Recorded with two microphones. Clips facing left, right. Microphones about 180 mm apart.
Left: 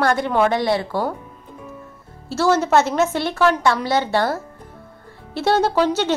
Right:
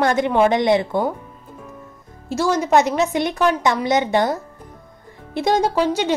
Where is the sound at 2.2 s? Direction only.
15° right (ahead or behind).